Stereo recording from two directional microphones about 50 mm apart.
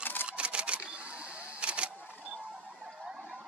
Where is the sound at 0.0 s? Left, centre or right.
Left.